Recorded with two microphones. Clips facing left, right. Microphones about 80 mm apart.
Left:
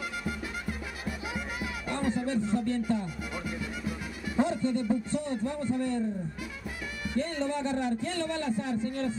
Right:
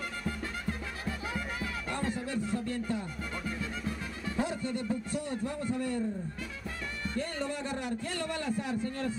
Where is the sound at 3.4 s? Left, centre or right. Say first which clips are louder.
Even; centre.